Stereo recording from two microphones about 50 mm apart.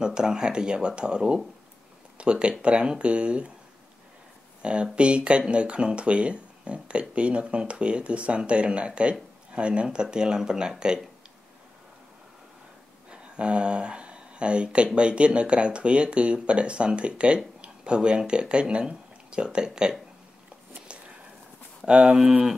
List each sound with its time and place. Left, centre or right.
0.0 s speech: centre
4.6 s speech: right
13.1 s speech: centre
21.8 s speech: centre